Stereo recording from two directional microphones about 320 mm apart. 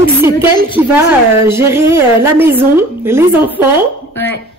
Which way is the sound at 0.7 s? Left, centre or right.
Centre.